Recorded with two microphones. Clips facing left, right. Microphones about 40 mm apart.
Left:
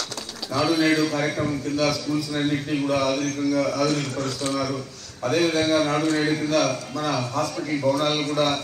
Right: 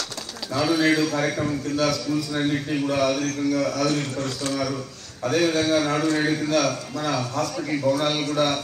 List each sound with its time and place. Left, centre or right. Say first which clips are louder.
0.6 s a man's voice: even; centre
3.9 s a man's voice: even; right
5.2 s a man's voice: even; centre